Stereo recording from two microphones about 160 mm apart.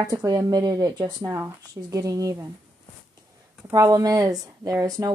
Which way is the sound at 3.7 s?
20° right (ahead or behind).